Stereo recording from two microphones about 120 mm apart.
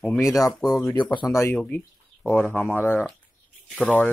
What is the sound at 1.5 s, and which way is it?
Speech, 10° left (ahead or behind).